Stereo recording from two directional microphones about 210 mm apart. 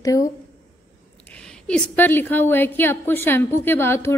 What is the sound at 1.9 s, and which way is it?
A woman's voice, 10° left (ahead or behind).